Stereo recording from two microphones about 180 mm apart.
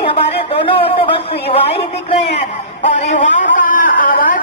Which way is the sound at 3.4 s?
50° left (ahead or behind).